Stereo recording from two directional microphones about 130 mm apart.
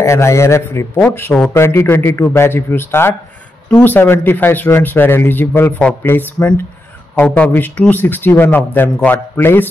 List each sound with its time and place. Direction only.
0.0 s a man's voice: 20° left (ahead or behind)